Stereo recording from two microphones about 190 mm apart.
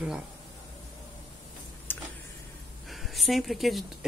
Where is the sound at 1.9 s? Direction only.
10° left (ahead or behind).